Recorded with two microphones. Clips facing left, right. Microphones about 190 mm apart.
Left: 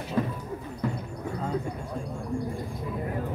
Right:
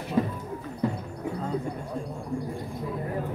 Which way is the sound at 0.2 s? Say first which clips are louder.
Right 2 dB; 20° right (ahead or behind).